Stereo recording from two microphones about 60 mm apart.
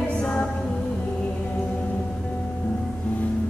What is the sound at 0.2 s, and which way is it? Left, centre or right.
Music, centre.